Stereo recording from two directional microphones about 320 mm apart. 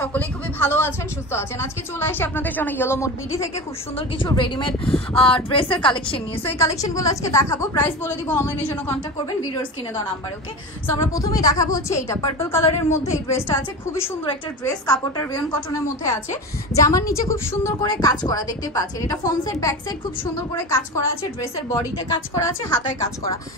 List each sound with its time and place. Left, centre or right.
0.0 s a man's voice: centre
16.7 s a woman's voice: centre